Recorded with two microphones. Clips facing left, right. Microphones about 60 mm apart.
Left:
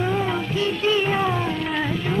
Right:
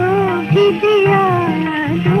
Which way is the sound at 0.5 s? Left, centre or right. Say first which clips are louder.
Right 13 dB; right.